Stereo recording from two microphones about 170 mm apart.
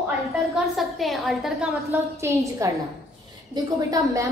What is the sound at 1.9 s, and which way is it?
A woman's voice, 15° right (ahead or behind).